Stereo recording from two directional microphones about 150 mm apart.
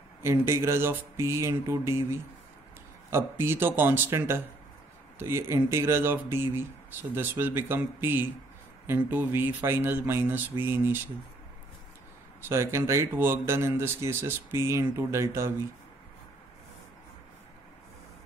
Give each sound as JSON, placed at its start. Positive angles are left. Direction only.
{"t": 0.2, "sound": "speech", "side_deg": -15}
{"t": 12.4, "sound": "speech", "side_deg": -15}